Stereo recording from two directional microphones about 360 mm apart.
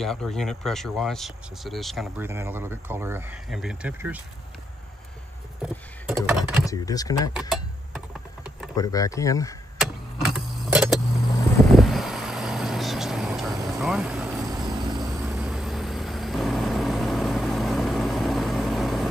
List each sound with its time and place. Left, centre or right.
0.0 s speech: centre
5.6 s a sound: centre
6.6 s speech: centre
7.3 s a sound: centre
8.7 s speech: centre
10.2 s vehicle: centre